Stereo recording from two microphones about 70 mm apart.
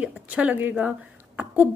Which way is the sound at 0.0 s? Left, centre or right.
Centre.